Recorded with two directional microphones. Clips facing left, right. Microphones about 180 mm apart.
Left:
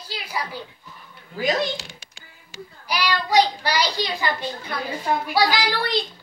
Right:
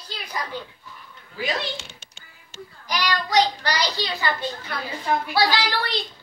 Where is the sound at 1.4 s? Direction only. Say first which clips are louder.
Left 5 dB; 35° left (ahead or behind).